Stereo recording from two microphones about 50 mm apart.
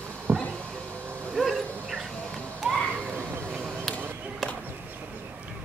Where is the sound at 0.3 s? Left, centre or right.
Right.